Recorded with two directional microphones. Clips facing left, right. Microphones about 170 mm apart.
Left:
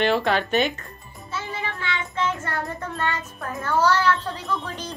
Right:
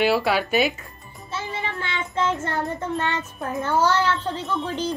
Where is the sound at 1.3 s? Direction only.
30° right (ahead or behind).